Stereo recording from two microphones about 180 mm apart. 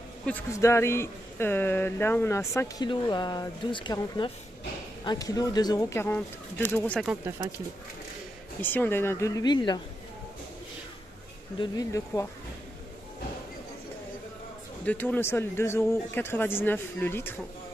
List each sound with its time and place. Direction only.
0.2 s speech: 10° left (ahead or behind)
8.5 s speech: 10° left (ahead or behind)
11.6 s speech: 20° left (ahead or behind)
14.9 s speech: 10° left (ahead or behind)